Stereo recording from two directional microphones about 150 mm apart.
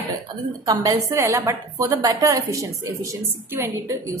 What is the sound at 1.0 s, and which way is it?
A woman's voice, 20° right (ahead or behind).